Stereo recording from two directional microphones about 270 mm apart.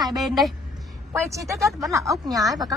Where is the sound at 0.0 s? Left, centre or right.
Centre.